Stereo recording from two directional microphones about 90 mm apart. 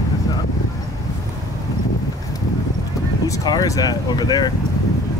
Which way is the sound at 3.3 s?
40° left (ahead or behind).